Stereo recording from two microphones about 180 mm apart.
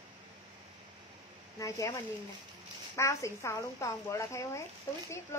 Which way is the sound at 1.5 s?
20° left (ahead or behind).